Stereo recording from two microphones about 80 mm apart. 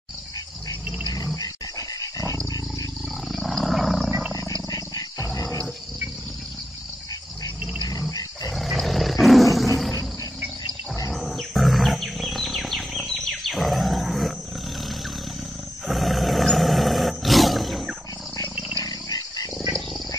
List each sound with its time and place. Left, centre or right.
1.1 s dog: left
3.3 s wild animals: centre
4.6 s wild animals: left
8.5 s roar: centre
11.1 s wild animals: centre
15.9 s roar: centre
18.9 s dog: left